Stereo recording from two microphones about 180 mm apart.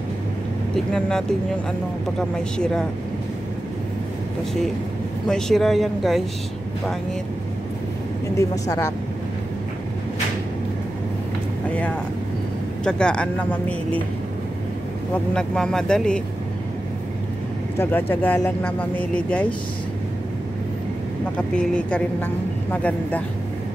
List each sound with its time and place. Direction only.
0.7 s speech: 5° left (ahead or behind)
5.3 s speech: centre (ahead or behind)
8.4 s a woman's voice: 15° left (ahead or behind)
12.8 s a woman's voice: 5° left (ahead or behind)
15.3 s speech: 5° left (ahead or behind)
17.7 s a woman's voice: 10° left (ahead or behind)
21.4 s a woman's voice: 5° left (ahead or behind)